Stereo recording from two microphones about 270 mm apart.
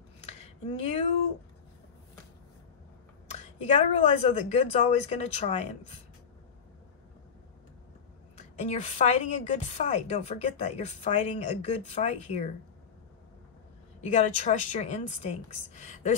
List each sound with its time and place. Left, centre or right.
0.3 s a sound: left
3.3 s a woman's voice: left
8.5 s a woman's voice: left
14.0 s a woman's voice: left